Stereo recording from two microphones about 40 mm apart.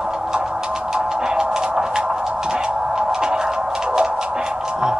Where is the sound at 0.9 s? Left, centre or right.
Right.